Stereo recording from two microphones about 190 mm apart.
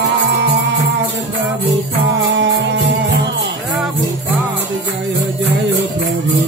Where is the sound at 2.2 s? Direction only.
70° right (ahead or behind).